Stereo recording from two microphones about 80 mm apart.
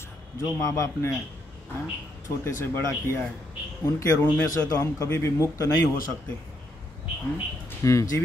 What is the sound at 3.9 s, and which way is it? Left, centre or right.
Speech, left.